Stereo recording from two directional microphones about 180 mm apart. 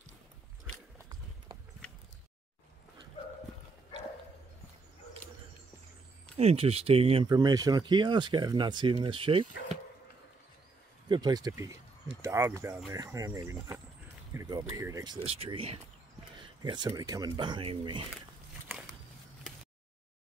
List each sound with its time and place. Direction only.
6.3 s speech: 35° right (ahead or behind)
7.2 s speech: 20° right (ahead or behind)
11.1 s speech: 20° right (ahead or behind)
15.2 s speech: 35° right (ahead or behind)